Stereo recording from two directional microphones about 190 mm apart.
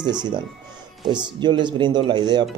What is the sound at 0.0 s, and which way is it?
Speech, 25° right (ahead or behind).